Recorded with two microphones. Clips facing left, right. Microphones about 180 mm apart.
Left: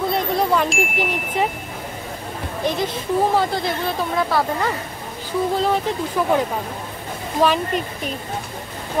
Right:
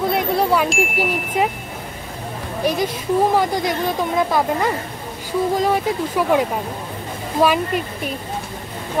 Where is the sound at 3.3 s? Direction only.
15° right (ahead or behind).